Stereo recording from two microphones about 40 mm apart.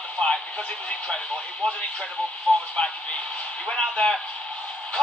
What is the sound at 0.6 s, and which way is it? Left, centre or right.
Speech, left.